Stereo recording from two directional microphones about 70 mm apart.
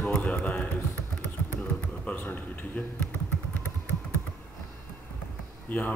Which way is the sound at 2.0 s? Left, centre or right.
Left.